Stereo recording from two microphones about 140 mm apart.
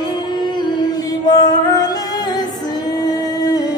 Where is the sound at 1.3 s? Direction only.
30° left (ahead or behind).